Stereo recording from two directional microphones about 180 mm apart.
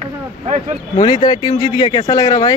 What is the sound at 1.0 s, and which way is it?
Speech, 25° left (ahead or behind).